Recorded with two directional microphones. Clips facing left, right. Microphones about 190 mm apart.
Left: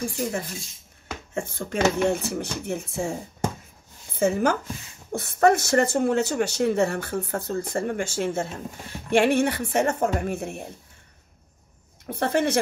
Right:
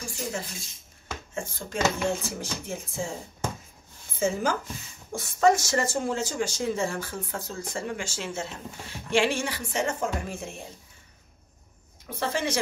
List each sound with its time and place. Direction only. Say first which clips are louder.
0.0 s speech: left 6 dB; 55° left (ahead or behind)
12.1 s speech: left 6 dB; 60° left (ahead or behind)